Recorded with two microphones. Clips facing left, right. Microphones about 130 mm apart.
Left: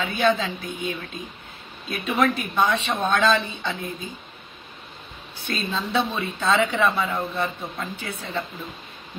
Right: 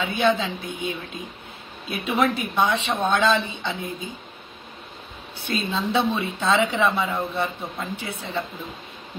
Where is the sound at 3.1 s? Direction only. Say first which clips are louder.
Even; 15° right (ahead or behind).